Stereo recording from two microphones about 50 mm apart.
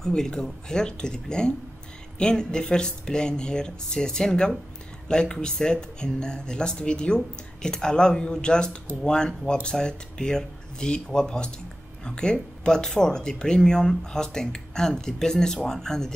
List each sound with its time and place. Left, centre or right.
0.0 s speech: centre